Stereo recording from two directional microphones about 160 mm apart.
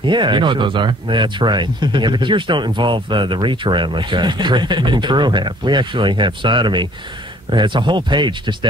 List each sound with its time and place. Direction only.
0.0 s speech: 30° right (ahead or behind)